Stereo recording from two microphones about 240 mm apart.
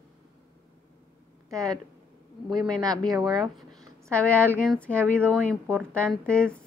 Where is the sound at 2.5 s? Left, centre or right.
Centre.